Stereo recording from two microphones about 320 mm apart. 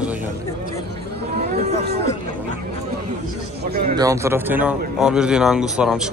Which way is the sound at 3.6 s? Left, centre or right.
Right.